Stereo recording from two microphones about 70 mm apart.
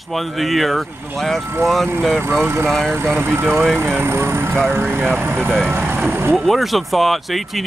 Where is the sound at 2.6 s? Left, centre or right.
Centre.